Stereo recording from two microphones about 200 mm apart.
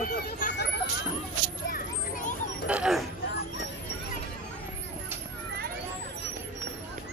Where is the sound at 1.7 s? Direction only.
40° left (ahead or behind).